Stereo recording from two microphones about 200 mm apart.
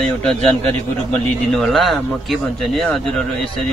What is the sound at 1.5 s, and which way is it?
Speech, centre (ahead or behind).